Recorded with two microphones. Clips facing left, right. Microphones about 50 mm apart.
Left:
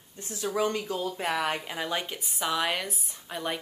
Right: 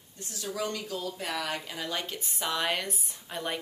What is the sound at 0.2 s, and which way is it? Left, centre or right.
Speech, left.